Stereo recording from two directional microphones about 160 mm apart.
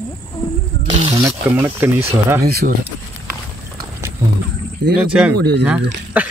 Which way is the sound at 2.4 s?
75° right (ahead or behind).